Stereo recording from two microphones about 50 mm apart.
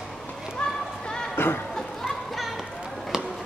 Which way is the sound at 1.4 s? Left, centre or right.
Left.